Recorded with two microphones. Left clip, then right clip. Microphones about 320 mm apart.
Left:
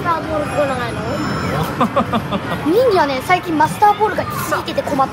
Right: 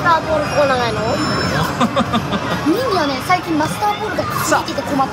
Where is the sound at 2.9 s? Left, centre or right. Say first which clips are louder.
Left 2 dB; left.